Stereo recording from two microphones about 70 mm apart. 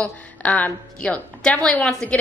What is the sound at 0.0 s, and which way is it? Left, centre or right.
A woman's voice, centre.